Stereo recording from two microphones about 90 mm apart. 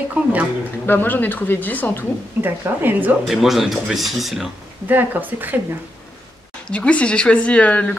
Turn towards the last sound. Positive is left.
turn(degrees=15)  # may be behind; listen again after turning